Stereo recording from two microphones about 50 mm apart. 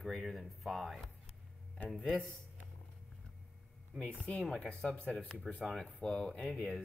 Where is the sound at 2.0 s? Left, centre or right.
Left.